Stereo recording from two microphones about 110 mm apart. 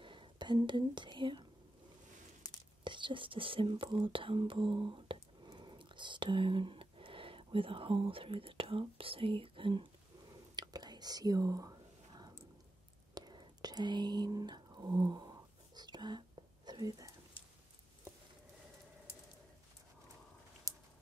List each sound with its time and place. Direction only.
0.0 s speech: 50° right (ahead or behind)
2.8 s speech: 45° right (ahead or behind)
10.5 s whispering: 40° right (ahead or behind)
13.1 s whispering: 40° right (ahead or behind)
20.7 s a sound: 30° left (ahead or behind)